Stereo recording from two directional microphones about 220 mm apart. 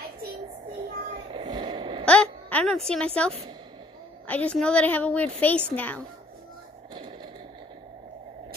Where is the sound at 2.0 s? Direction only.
5° left (ahead or behind).